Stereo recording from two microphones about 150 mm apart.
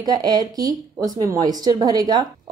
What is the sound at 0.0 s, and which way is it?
Speech, 25° right (ahead or behind).